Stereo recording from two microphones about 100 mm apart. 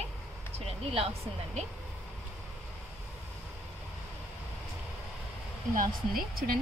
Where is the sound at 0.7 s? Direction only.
80° right.